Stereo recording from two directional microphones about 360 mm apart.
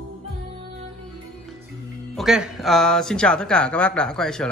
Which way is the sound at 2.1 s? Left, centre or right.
Centre.